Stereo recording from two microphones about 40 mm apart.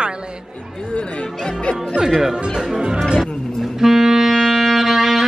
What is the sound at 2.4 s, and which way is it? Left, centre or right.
Speech, right.